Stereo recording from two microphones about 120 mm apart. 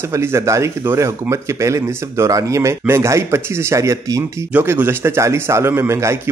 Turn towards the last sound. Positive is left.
turn(degrees=-20)  # may be behind; listen again after turning